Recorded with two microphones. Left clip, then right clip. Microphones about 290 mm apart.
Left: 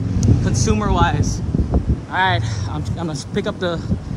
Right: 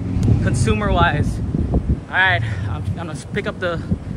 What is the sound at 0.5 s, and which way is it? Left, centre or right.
Speech, centre.